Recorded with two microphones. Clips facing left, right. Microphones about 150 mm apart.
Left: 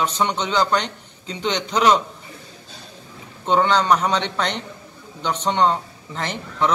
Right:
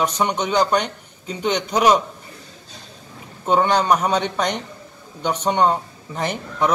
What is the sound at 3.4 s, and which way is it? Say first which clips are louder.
Speech: right 1 dB; 10° right (ahead or behind).